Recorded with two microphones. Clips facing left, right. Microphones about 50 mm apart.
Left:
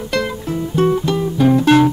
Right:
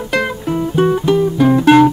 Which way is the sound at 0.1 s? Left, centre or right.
Centre.